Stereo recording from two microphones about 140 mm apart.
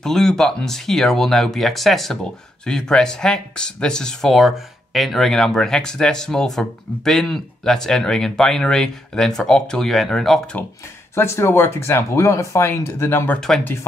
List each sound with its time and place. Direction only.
0.0 s speech: 5° left (ahead or behind)
11.1 s speech: 20° left (ahead or behind)